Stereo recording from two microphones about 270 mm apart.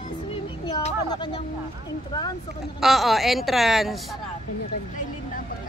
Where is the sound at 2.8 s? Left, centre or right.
Centre.